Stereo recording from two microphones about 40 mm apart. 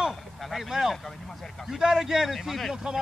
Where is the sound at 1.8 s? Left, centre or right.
Centre.